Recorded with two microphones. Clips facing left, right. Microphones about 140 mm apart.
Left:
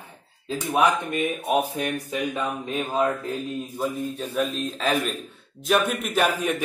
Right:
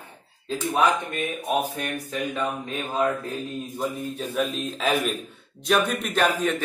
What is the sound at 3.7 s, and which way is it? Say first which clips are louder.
A man's voice: left 1 dB; centre (ahead or behind).